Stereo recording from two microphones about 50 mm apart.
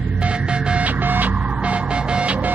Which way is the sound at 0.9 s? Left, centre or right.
Right.